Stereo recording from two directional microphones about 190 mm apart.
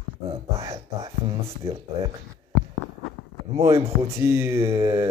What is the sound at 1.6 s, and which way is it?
Speech, 15° right (ahead or behind).